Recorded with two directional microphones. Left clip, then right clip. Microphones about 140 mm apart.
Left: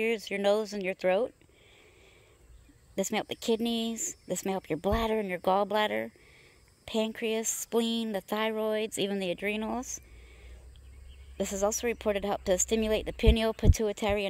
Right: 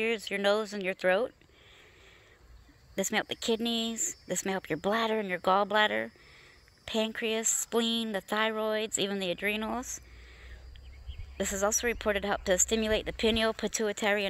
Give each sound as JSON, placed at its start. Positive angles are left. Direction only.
{"t": 0.0, "sound": "speech", "side_deg": 30}
{"t": 3.0, "sound": "speech", "side_deg": 25}